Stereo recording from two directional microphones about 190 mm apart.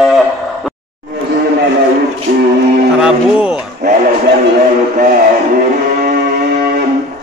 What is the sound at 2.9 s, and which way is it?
Speech, 5° right (ahead or behind).